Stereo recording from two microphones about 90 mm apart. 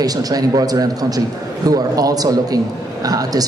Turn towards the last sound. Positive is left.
turn(degrees=-45)  # may be behind; listen again after turning